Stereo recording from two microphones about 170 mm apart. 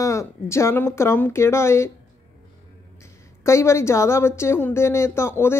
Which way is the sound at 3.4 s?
15° left (ahead or behind).